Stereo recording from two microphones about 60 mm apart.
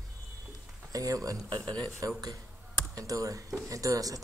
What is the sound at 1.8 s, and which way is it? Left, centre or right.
Speech, right.